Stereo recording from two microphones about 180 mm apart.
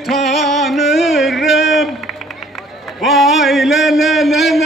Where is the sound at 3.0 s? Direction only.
Centre (ahead or behind).